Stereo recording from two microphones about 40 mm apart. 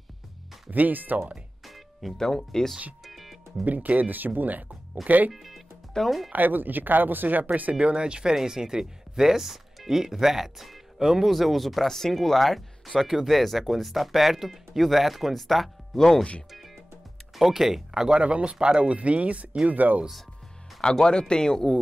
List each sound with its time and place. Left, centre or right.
0.7 s speech: right
1.6 s music: centre
2.1 s speech: centre
3.0 s music: centre
3.6 s speech: right
5.3 s speech: centre
6.3 s speech: right
7.7 s speech: right; by 16.3 s centre
16.5 s music: centre
17.4 s speech: centre
18.2 s speech: right
20.8 s speech: left